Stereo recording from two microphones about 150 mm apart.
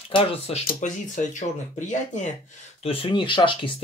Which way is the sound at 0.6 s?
60° left (ahead or behind).